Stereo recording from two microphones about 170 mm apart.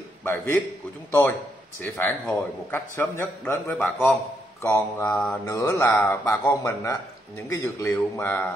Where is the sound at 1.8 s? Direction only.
10° left (ahead or behind).